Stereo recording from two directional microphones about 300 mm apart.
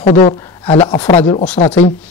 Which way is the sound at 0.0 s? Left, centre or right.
Left.